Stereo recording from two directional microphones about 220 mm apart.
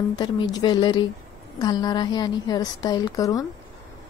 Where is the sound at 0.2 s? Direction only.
20° left (ahead or behind).